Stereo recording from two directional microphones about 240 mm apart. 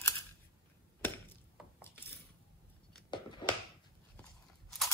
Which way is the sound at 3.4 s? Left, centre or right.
Centre.